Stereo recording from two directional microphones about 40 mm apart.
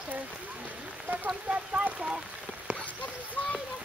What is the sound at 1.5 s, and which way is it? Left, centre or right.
Speech, right.